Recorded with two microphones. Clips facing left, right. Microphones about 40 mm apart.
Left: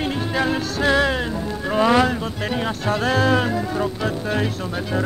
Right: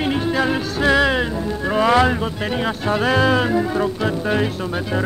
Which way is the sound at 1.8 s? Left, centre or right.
Centre.